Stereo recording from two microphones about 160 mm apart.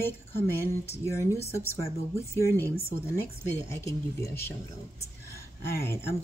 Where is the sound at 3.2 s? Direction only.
15° left (ahead or behind).